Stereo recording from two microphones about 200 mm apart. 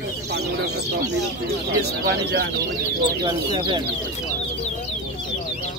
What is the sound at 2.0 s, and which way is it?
Speech, 55° right (ahead or behind).